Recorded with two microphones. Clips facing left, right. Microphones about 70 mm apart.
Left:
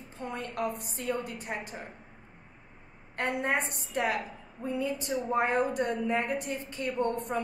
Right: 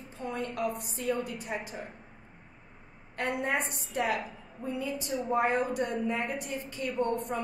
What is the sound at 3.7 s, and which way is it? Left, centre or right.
A woman's voice, left.